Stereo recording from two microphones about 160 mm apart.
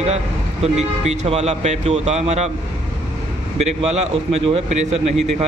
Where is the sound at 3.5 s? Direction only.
45° right (ahead or behind).